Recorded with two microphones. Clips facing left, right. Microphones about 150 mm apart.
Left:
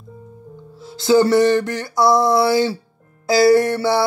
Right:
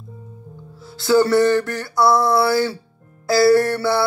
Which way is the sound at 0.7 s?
20° left (ahead or behind).